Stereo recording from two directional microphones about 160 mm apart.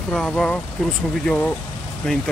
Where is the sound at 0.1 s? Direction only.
5° left (ahead or behind).